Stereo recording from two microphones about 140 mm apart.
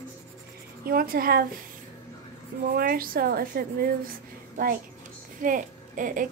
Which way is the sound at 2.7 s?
90° right.